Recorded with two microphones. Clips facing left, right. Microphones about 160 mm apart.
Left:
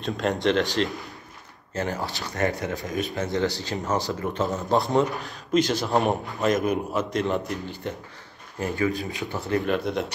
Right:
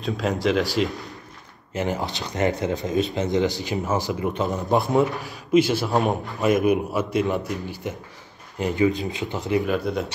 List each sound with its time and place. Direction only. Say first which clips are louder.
0.0 s speech: right 1 dB; centre (ahead or behind)
1.7 s a man's voice: right 3 dB; 15° right (ahead or behind)
4.9 s a man's voice: right 2 dB; centre (ahead or behind); by 9.6 s 20° right (ahead or behind)
9.7 s speech: right 1 dB; centre (ahead or behind)